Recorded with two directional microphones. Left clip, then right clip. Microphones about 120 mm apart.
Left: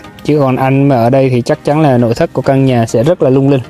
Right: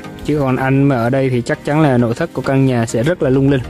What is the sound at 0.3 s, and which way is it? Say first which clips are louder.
Speech: left 5 dB; 35° left (ahead or behind).